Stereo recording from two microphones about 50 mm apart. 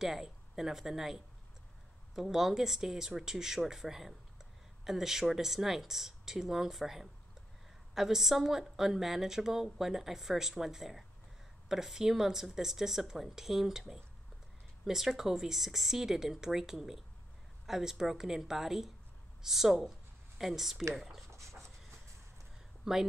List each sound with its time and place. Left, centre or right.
0.0 s a woman's voice: centre
21.3 s dog: right
22.8 s speech: centre